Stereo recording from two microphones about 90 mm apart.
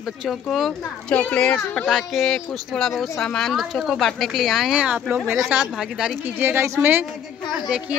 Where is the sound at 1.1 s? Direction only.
15° left (ahead or behind).